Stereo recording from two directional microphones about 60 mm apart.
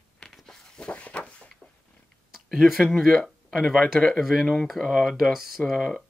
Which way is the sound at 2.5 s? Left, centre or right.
Centre.